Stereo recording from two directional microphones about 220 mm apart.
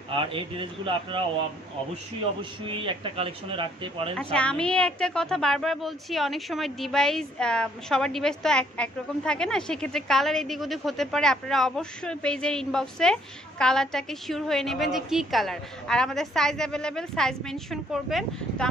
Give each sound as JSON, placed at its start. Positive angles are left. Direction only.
{"t": 0.1, "sound": "speech", "side_deg": -25}
{"t": 2.7, "sound": "speech", "side_deg": -25}
{"t": 4.2, "sound": "a woman's voice", "side_deg": 5}